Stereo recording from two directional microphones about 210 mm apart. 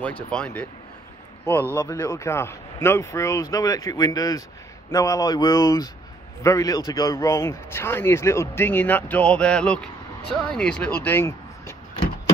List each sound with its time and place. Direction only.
0.3 s speech: 5° left (ahead or behind)
1.8 s speech: 15° left (ahead or behind)